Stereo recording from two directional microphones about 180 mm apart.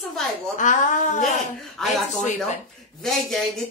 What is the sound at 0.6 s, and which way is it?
Speech, 45° left (ahead or behind).